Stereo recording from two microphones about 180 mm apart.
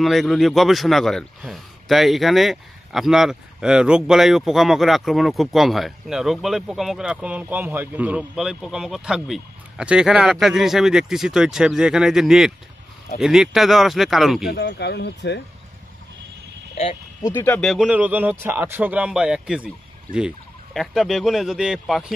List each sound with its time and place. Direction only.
0.0 s speech: centre (ahead or behind)
14.5 s speech: 70° left (ahead or behind)
17.2 s speech: 10° left (ahead or behind)